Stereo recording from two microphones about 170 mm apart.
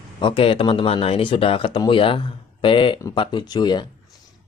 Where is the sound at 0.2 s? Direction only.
30° left (ahead or behind).